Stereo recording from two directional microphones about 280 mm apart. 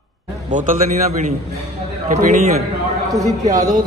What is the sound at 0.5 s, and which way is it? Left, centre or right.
Speech, right.